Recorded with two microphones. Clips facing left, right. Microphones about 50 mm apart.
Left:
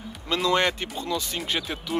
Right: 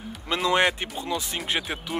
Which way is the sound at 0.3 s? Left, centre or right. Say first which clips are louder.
Right 1 dB; centre.